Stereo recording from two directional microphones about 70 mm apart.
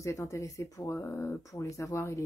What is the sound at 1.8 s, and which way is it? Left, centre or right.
Speech, left.